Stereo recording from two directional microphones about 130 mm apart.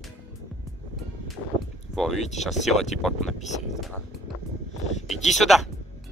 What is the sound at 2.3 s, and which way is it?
Speech, 60° left (ahead or behind).